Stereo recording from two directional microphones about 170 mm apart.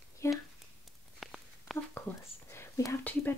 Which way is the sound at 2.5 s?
15° left (ahead or behind).